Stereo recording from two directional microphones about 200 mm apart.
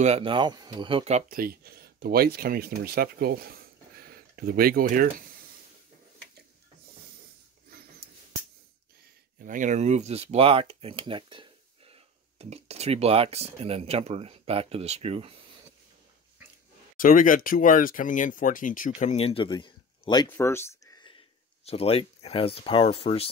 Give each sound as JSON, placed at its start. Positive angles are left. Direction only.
{"t": 0.0, "sound": "speech", "side_deg": -30}
{"t": 1.3, "sound": "speech", "side_deg": -45}
{"t": 9.4, "sound": "speech", "side_deg": -40}
{"t": 16.9, "sound": "speech", "side_deg": 45}
{"t": 20.2, "sound": "a sound", "side_deg": 10}
{"t": 21.6, "sound": "speech", "side_deg": 30}